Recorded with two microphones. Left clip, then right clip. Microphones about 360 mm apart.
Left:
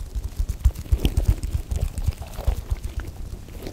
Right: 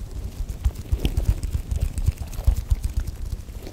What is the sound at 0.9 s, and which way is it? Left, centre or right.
Biting, centre.